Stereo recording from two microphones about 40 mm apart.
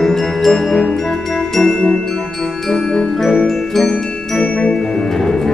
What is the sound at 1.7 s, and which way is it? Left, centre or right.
Marimba, left.